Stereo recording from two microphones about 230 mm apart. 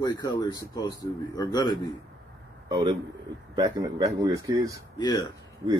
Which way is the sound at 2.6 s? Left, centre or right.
Centre.